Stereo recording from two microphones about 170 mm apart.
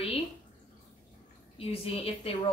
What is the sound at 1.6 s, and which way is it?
Speech, 35° left (ahead or behind).